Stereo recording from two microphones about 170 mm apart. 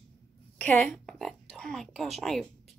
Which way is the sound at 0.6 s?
10° left (ahead or behind).